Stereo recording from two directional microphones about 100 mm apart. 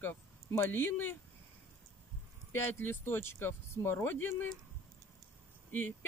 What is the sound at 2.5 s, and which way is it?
Speech, 25° left (ahead or behind).